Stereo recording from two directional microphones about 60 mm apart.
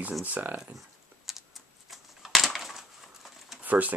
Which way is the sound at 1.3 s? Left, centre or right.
Centre.